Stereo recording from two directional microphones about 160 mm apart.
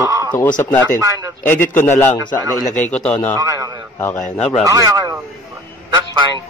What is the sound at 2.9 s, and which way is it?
Speech, 5° left (ahead or behind).